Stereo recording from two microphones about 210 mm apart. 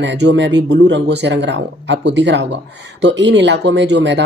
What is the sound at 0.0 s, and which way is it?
Speech, 55° right (ahead or behind).